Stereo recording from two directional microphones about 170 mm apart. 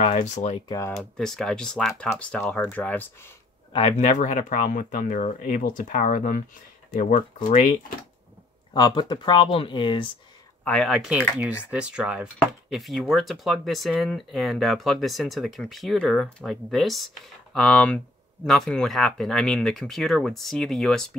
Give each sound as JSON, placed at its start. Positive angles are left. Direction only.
{"t": 0.0, "sound": "speech", "side_deg": 45}
{"t": 0.7, "sound": "speech", "side_deg": 20}
{"t": 0.9, "sound": "speech", "side_deg": 5}
{"t": 3.7, "sound": "speech", "side_deg": 40}
{"t": 8.7, "sound": "speech", "side_deg": 25}
{"t": 10.6, "sound": "speech", "side_deg": 5}